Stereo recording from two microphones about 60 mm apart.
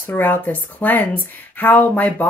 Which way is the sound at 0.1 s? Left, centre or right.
Left.